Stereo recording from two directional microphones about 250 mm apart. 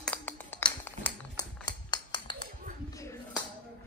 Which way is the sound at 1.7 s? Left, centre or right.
Centre.